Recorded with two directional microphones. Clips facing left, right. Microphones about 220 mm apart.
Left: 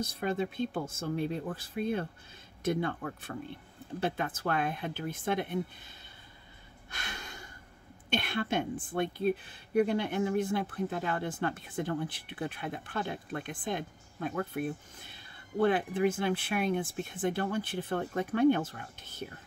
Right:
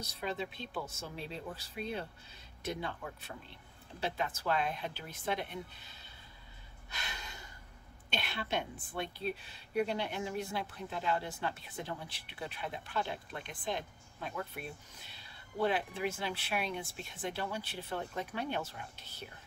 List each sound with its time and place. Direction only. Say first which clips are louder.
0.0 s speech: left 7 dB; 50° left (ahead or behind)
6.9 s a sound: left 3 dB; 50° left (ahead or behind)
8.1 s speech: left 6 dB; 50° left (ahead or behind)